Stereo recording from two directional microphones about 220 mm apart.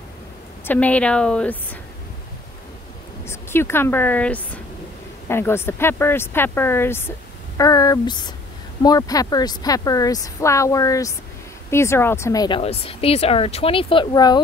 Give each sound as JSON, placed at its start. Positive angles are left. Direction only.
{"t": 0.7, "sound": "speech", "side_deg": 5}
{"t": 3.3, "sound": "speech", "side_deg": 10}